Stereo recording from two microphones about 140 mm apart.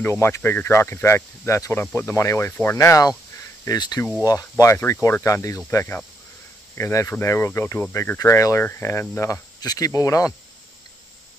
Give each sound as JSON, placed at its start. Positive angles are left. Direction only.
{"t": 0.0, "sound": "speech", "side_deg": 20}